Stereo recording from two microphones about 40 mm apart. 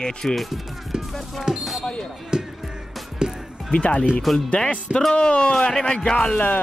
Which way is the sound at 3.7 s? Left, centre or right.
Left.